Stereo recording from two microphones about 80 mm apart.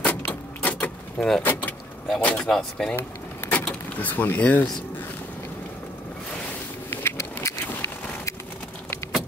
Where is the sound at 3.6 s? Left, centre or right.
Left.